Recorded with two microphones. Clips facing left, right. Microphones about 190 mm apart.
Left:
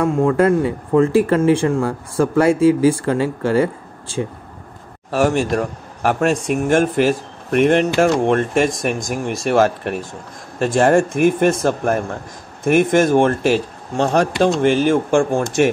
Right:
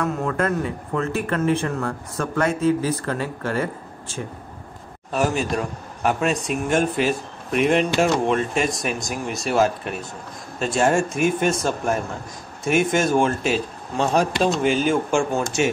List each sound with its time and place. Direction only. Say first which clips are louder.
0.0 s speech: left 8 dB; 30° left (ahead or behind)
5.1 s speech: left 5 dB; 70° left (ahead or behind)
6.8 s speech: left 5 dB; 55° left (ahead or behind)
13.9 s speech: left 4 dB; 70° left (ahead or behind); by 15.7 s 55° left (ahead or behind)